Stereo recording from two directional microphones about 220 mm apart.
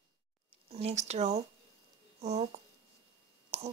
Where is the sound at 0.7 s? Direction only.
30° right (ahead or behind).